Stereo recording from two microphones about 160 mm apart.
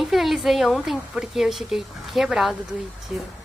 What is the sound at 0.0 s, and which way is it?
A woman's voice, centre (ahead or behind).